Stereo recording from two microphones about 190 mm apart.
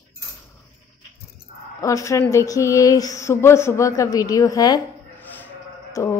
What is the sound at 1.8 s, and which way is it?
A woman's voice, 15° left (ahead or behind).